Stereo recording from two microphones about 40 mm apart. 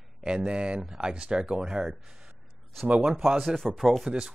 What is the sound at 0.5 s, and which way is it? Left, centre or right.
Speech, right.